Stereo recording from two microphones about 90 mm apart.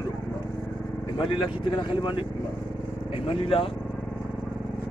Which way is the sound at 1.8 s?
65° left (ahead or behind).